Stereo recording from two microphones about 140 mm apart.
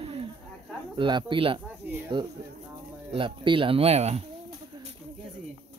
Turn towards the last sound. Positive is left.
turn(degrees=-50)  # may be behind; listen again after turning